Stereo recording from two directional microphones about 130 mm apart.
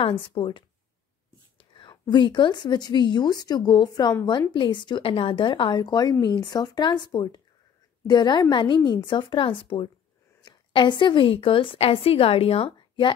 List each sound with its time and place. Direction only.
0.0 s a woman's voice: 45° left (ahead or behind)